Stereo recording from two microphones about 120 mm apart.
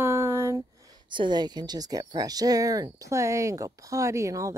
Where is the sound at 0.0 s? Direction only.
20° right (ahead or behind).